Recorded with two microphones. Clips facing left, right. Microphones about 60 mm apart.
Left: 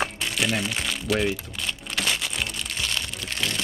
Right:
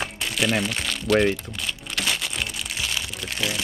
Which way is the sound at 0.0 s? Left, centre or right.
Centre.